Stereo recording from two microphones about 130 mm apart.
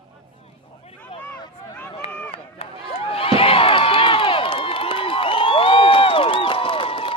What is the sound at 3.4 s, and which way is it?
Crowd, 45° left (ahead or behind).